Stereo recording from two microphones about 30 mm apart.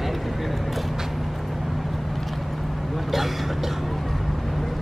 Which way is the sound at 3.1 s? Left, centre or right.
Centre.